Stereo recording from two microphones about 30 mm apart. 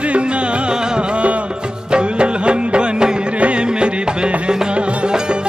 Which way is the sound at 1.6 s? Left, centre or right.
Right.